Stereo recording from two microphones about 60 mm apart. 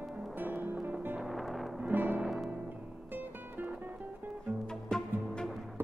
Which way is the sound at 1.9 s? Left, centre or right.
Right.